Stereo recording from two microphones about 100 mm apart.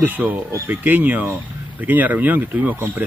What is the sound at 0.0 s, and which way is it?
Speech, 20° right (ahead or behind).